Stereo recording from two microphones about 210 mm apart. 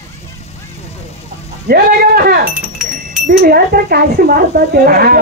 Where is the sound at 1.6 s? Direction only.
45° right (ahead or behind).